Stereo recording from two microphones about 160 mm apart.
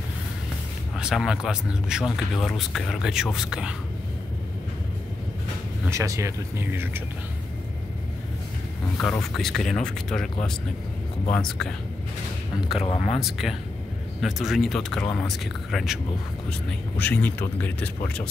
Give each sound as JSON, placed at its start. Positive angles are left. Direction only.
{"t": 0.9, "sound": "speech", "side_deg": -5}
{"t": 5.9, "sound": "speech", "side_deg": -20}
{"t": 9.0, "sound": "speech", "side_deg": 5}
{"t": 12.7, "sound": "speech", "side_deg": 35}
{"t": 13.2, "sound": "speech", "side_deg": 0}
{"t": 17.0, "sound": "a man's voice", "side_deg": 10}